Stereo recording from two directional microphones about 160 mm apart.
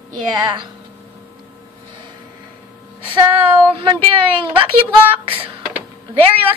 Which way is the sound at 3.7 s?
30° right (ahead or behind).